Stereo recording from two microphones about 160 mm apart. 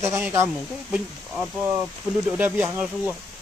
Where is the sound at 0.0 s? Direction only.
15° right (ahead or behind).